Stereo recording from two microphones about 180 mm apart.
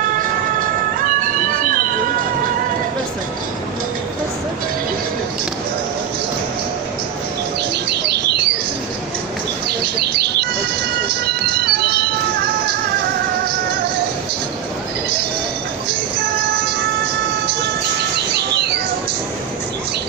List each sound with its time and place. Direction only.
0.0 s music: 50° right (ahead or behind)
7.9 s bird: 65° right (ahead or behind)
9.7 s bird: 65° right (ahead or behind)
11.1 s music: 65° right (ahead or behind)
18.3 s bird: 65° right (ahead or behind)